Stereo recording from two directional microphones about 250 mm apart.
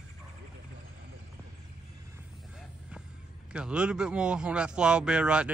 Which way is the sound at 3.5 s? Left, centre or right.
Centre.